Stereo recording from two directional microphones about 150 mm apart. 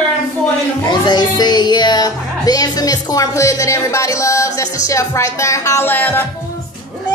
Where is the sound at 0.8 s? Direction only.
30° left (ahead or behind); by 6.2 s 10° left (ahead or behind).